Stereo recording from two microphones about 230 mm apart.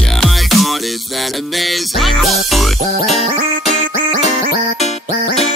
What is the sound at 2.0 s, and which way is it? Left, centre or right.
Music, centre.